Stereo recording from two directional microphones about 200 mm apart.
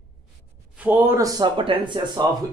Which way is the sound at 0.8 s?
10° right (ahead or behind).